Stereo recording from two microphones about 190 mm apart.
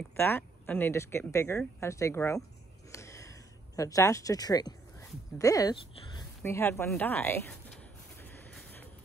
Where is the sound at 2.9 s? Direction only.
15° left (ahead or behind).